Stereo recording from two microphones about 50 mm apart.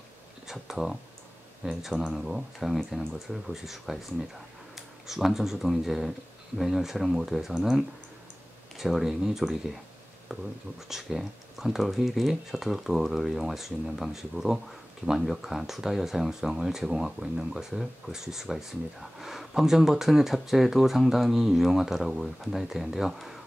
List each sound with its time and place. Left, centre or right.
0.5 s a sound: centre
1.6 s speech: centre
10.9 s speech: centre